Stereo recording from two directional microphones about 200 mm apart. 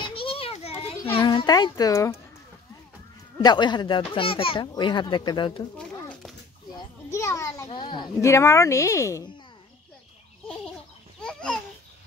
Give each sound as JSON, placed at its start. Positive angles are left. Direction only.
{"t": 0.0, "sound": "children playing", "side_deg": 25}
{"t": 1.1, "sound": "a child's voice", "side_deg": 20}
{"t": 3.4, "sound": "speech", "side_deg": 20}
{"t": 5.8, "sound": "a sound", "side_deg": 5}
{"t": 11.1, "sound": "babbling", "side_deg": 5}